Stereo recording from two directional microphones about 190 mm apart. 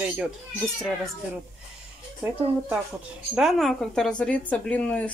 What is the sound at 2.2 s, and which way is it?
Speech, 10° right (ahead or behind).